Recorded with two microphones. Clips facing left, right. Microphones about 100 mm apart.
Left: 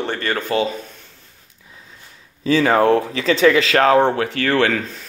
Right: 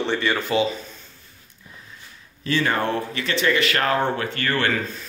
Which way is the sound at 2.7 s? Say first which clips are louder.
Left 9 dB; 90° left.